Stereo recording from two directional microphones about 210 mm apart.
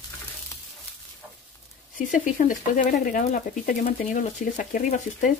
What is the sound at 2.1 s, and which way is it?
Speech, 40° left (ahead or behind).